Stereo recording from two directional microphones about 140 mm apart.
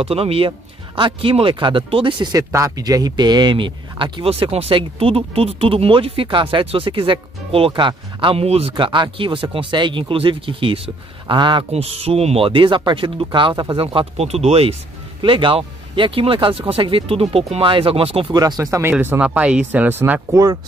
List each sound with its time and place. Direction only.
0.0 s speech: 45° right (ahead or behind)
2.3 s speech: 25° right (ahead or behind)
11.7 s speech: 45° right (ahead or behind)
18.3 s speech: 25° right (ahead or behind)